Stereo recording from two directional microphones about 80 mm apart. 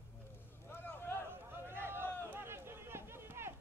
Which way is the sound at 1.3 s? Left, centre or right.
Right.